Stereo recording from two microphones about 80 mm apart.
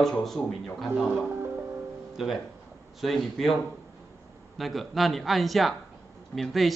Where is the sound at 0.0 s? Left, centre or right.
Centre.